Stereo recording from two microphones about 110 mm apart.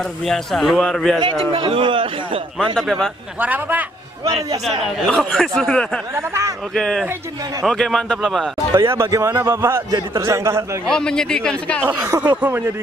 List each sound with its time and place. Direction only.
0.3 s a man's voice: centre (ahead or behind)
1.2 s speech: 50° right (ahead or behind)
2.6 s a man's voice: 5° left (ahead or behind)
3.3 s speech: 15° right (ahead or behind)
4.8 s a man's voice: centre (ahead or behind)
8.7 s a man's voice: 25° right (ahead or behind)
10.9 s speech: 5° left (ahead or behind)
11.8 s speech: 15° right (ahead or behind)